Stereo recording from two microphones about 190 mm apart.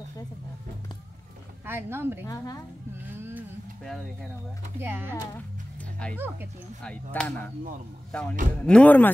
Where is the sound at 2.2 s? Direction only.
20° left (ahead or behind).